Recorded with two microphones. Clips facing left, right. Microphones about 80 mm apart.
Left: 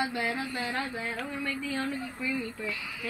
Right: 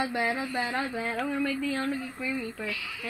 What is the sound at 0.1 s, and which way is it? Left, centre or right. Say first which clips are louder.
Speech: right 3 dB; centre.